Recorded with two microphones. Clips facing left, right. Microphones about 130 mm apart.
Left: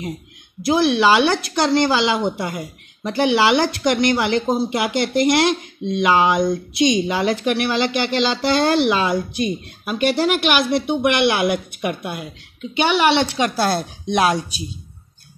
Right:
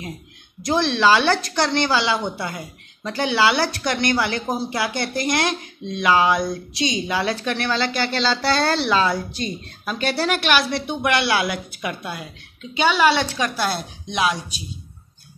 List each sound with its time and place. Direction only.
0.6 s speech: 10° left (ahead or behind)
10.6 s speech: 55° left (ahead or behind)
11.0 s a woman's voice: 20° left (ahead or behind)
13.6 s speech: 40° left (ahead or behind)